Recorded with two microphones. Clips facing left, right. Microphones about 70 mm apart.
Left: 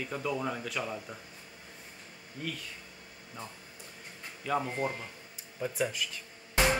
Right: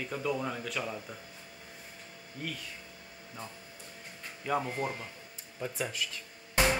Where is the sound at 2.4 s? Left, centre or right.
Centre.